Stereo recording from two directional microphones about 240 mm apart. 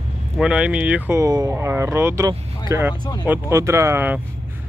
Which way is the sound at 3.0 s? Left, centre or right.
Centre.